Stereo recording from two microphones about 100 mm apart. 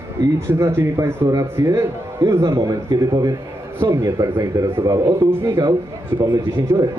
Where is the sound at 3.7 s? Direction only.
25° right (ahead or behind).